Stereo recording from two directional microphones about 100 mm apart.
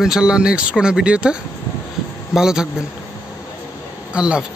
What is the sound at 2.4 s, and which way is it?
Speech, 5° right (ahead or behind).